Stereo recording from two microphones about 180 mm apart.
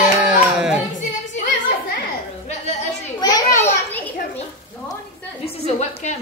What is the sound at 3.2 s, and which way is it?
Children playing, 20° left (ahead or behind).